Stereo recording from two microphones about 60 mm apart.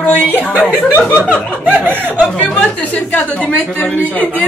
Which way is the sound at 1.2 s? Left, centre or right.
Centre.